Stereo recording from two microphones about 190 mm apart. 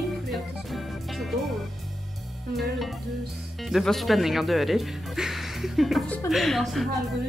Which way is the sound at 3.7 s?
Centre (ahead or behind).